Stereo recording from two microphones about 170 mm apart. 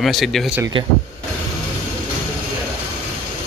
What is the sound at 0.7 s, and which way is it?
Speech, 30° right (ahead or behind).